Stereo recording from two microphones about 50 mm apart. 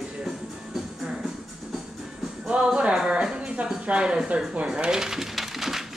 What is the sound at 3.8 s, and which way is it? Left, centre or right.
Speech, centre.